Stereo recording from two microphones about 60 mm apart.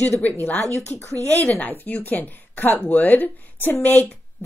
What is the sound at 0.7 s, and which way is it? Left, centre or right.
Speech, left.